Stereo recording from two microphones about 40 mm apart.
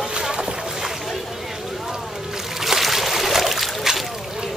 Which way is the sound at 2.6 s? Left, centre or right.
Centre.